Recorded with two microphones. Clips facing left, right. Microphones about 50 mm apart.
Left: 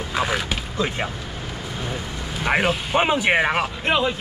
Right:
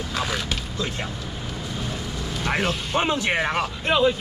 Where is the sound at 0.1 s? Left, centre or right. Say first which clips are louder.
Left 5 dB; centre.